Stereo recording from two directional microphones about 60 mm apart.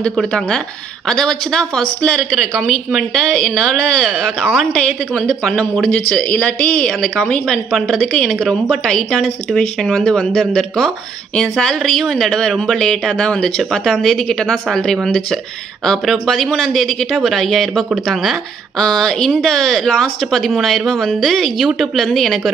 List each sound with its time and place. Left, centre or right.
1.0 s speech: centre
4.1 s speech: centre
5.4 s speech: centre
6.2 s a woman's voice: left
6.9 s speech: centre
7.7 s speech: centre